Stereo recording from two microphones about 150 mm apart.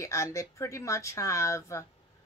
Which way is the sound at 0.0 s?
20° left (ahead or behind).